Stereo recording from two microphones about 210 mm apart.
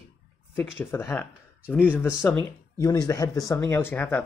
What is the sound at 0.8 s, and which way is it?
Speech, 10° left (ahead or behind).